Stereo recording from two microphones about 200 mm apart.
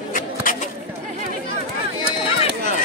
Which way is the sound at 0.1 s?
40° left (ahead or behind).